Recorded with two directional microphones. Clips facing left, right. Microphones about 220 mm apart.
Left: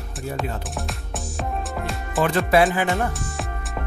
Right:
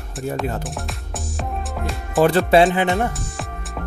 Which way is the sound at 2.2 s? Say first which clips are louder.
Right 4 dB; 35° right (ahead or behind).